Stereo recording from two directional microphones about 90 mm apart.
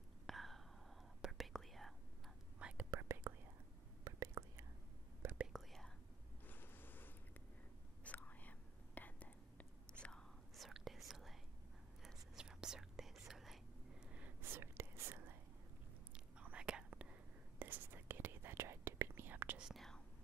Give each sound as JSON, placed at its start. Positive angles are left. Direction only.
{"t": 0.3, "sound": "whispering", "side_deg": 0}
{"t": 2.9, "sound": "whispering", "side_deg": -25}
{"t": 5.5, "sound": "whispering", "side_deg": 0}
{"t": 6.4, "sound": "mechanisms", "side_deg": 20}
{"t": 8.0, "sound": "whispering", "side_deg": 15}
{"t": 10.5, "sound": "whispering", "side_deg": 0}
{"t": 14.0, "sound": "a sound", "side_deg": -15}
{"t": 14.4, "sound": "whispering", "side_deg": -25}
{"t": 16.1, "sound": "whispering", "side_deg": -10}
{"t": 19.6, "sound": "whispering", "side_deg": 0}